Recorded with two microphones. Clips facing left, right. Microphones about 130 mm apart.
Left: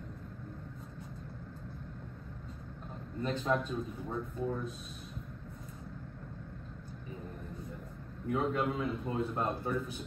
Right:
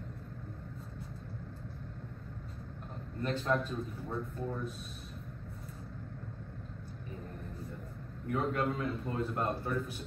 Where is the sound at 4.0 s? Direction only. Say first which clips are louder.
Left 1 dB; 15° left (ahead or behind).